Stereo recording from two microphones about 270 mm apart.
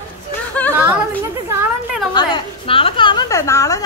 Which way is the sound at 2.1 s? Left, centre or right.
Centre.